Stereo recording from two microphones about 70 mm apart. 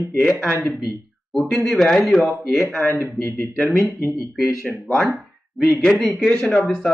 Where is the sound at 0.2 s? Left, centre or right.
Centre.